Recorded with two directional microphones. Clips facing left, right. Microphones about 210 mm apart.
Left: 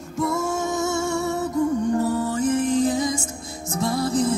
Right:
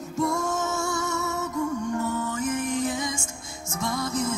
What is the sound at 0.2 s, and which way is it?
Music, 5° left (ahead or behind).